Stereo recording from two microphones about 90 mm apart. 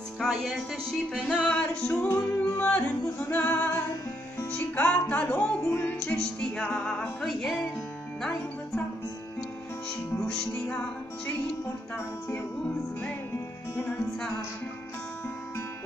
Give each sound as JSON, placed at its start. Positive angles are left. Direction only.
{"t": 0.2, "sound": "music", "side_deg": 0}
{"t": 2.0, "sound": "music", "side_deg": 25}
{"t": 6.0, "sound": "music", "side_deg": 10}
{"t": 12.6, "sound": "music", "side_deg": 25}